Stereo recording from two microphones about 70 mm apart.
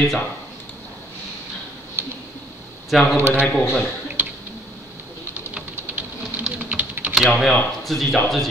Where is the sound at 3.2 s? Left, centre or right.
Right.